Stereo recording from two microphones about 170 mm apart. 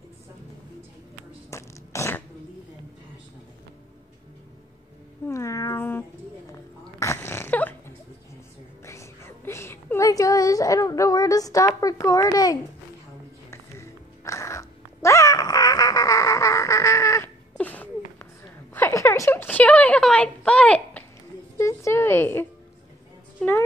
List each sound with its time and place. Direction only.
1.5 s a sound: 15° left (ahead or behind)
5.2 s cat: 15° left (ahead or behind)
7.0 s dog: 15° left (ahead or behind)
8.8 s a sound: 15° left (ahead or behind)
13.5 s music: 15° left (ahead or behind)
21.5 s music: 15° left (ahead or behind)